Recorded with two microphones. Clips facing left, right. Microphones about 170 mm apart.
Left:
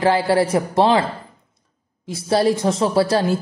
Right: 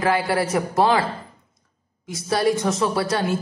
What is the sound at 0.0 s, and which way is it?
A man's voice, 30° left (ahead or behind).